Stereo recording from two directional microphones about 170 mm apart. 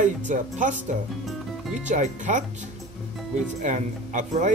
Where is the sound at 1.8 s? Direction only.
45° right (ahead or behind).